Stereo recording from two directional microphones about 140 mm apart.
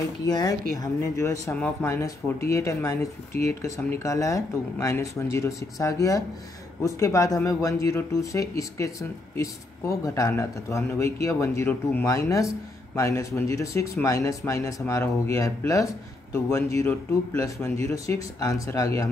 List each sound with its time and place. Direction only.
0.3 s speech: 30° left (ahead or behind)